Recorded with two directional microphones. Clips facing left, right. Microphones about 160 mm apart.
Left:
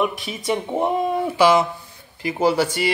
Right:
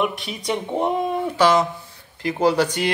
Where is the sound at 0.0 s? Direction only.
Centre (ahead or behind).